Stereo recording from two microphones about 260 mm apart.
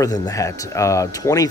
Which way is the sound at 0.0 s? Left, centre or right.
Centre.